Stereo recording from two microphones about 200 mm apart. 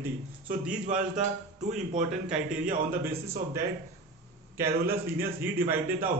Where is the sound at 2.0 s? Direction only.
5° right (ahead or behind).